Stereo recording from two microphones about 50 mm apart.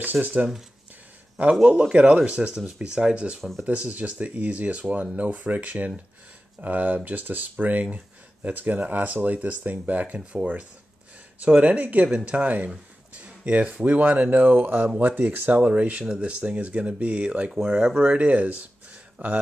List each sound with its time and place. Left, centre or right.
0.0 s speech: right